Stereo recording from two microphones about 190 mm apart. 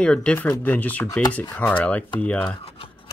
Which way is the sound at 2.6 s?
30° left (ahead or behind).